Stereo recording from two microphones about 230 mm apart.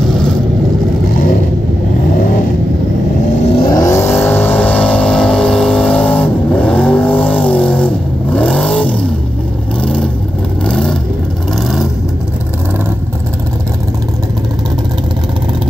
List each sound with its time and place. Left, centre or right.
1.1 s vehicle: left
3.5 s vehicle: centre